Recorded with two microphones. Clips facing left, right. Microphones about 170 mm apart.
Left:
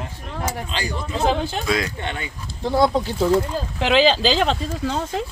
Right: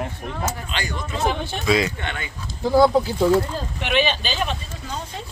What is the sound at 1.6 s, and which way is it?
Speech, 5° right (ahead or behind).